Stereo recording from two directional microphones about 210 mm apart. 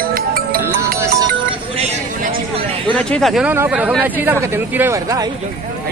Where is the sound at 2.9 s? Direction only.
5° left (ahead or behind); by 5.2 s 15° right (ahead or behind).